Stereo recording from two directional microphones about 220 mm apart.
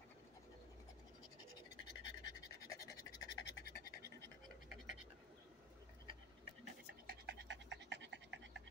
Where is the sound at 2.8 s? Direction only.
50° left (ahead or behind).